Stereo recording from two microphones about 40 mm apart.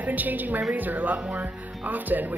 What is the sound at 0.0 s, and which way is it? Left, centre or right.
A woman's voice, right.